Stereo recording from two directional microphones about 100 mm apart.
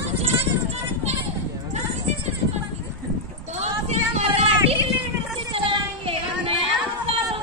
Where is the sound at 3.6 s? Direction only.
90° right.